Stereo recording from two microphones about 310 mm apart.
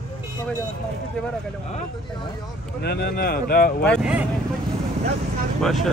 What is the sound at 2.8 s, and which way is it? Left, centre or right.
Speech, left.